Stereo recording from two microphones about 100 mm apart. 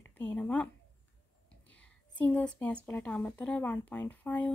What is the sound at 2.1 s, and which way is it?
A woman's voice, 15° left (ahead or behind).